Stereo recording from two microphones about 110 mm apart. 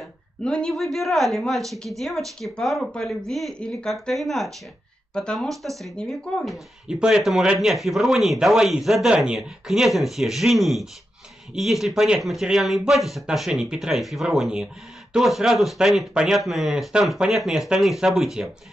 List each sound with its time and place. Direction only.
0.4 s speech: 10° left (ahead or behind)